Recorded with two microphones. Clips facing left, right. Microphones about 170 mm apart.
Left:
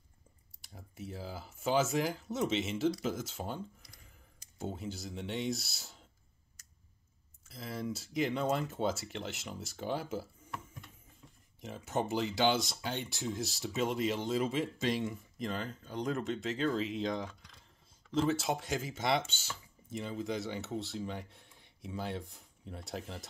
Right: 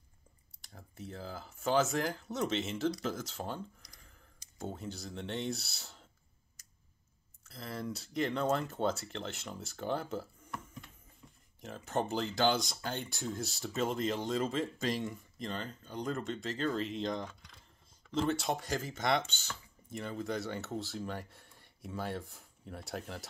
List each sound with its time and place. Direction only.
0.6 s speech: 5° left (ahead or behind)
7.4 s speech: centre (ahead or behind)